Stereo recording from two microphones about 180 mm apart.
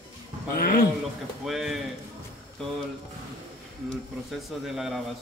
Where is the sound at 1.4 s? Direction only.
Centre (ahead or behind).